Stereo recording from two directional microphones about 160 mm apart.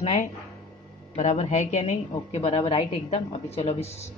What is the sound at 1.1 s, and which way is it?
A woman's voice, 45° left (ahead or behind).